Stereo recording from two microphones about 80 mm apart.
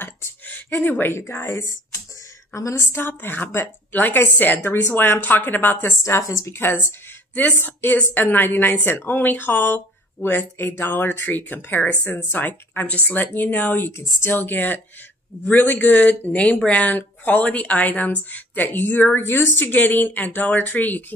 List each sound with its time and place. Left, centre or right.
0.0 s a sound: left
1.1 s speech: left
6.0 s speech: left
6.5 s speech: left